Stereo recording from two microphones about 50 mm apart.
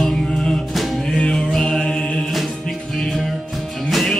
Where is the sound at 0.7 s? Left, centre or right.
Centre.